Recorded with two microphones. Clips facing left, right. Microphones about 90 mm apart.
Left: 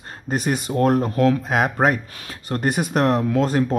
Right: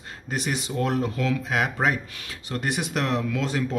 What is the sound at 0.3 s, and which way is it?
Speech, 45° left (ahead or behind).